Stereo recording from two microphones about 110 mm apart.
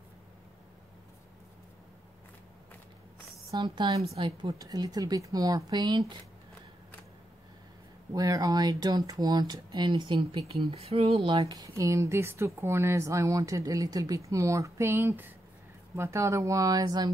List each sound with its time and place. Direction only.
3.6 s a woman's voice: 45° right (ahead or behind)
4.5 s speech: 35° right (ahead or behind)
8.1 s speech: 35° right (ahead or behind); by 11.3 s 65° right (ahead or behind)
11.3 s speech: 35° right (ahead or behind)